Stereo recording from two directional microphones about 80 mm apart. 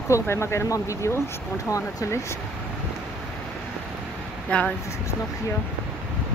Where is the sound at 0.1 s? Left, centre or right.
Left.